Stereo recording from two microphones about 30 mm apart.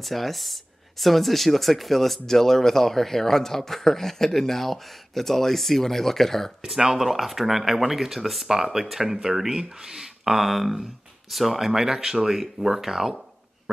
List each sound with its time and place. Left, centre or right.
0.0 s speech: centre
6.6 s speech: centre
7.0 s speech: centre
10.4 s speech: centre